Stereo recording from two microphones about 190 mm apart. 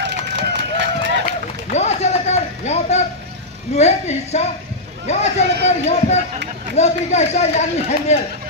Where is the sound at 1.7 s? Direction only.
35° left (ahead or behind).